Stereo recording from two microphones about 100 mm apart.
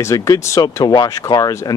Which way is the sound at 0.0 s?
30° left (ahead or behind).